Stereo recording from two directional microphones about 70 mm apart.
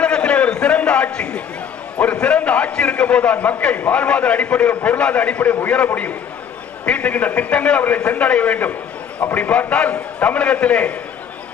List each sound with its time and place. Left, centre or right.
0.0 s a sound: centre
2.1 s a man's voice: centre
6.9 s a man's voice: centre